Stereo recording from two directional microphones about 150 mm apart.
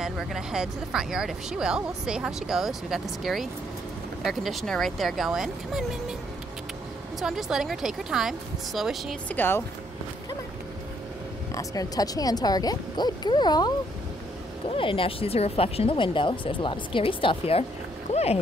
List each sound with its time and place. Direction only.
0.0 s speech: centre (ahead or behind)
7.2 s speech: centre (ahead or behind)
9.3 s speech: 15° left (ahead or behind)
11.5 s speech: 25° left (ahead or behind)
14.8 s speech: 35° left (ahead or behind)